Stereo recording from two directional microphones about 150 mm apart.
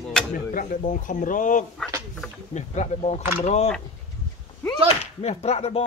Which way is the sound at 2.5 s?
50° left (ahead or behind).